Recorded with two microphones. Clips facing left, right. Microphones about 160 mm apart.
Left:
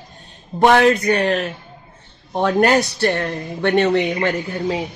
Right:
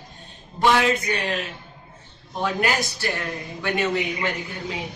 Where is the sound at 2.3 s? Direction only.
60° left (ahead or behind).